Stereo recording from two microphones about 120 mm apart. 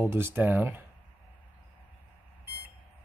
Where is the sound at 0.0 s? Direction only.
20° right (ahead or behind).